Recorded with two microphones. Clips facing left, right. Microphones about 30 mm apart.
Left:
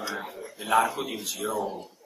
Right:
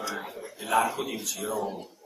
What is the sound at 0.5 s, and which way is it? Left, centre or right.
A man's voice, centre.